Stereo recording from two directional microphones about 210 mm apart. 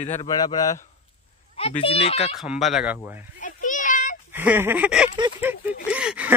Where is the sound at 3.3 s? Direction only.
40° left (ahead or behind).